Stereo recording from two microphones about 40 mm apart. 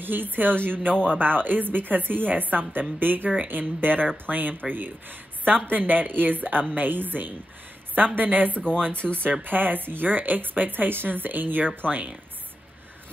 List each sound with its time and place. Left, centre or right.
0.0 s a woman's voice: right